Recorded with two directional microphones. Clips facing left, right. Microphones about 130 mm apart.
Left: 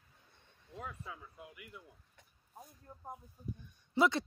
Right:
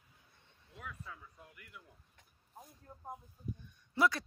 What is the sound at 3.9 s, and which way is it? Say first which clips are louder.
Speech: left 2 dB; 20° left (ahead or behind).